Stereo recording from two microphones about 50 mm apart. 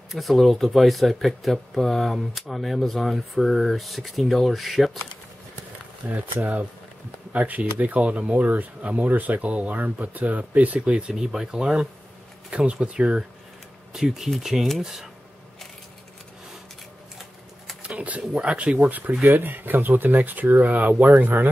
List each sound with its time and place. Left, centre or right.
0.1 s speech: centre
6.0 s speech: right
13.9 s speech: centre
17.8 s a sound: right
18.3 s speech: right